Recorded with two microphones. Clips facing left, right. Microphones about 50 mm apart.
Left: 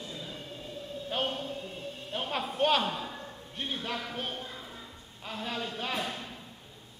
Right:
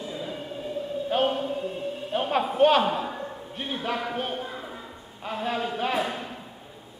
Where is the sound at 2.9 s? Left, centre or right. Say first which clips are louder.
Right 8 dB; centre.